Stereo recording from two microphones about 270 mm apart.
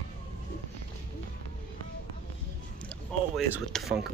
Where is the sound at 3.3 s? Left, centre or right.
Centre.